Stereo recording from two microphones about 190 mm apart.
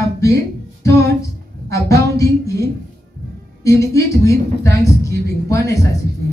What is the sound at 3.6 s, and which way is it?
A woman's voice, 15° left (ahead or behind).